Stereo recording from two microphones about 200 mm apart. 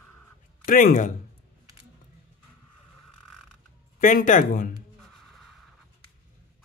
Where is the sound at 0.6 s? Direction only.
45° left (ahead or behind).